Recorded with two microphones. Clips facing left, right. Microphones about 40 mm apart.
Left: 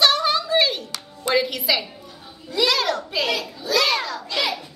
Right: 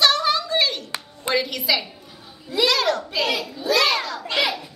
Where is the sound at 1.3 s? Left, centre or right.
Centre.